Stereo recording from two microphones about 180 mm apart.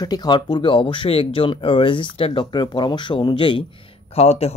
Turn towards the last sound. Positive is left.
turn(degrees=35)  # may be behind; listen again after turning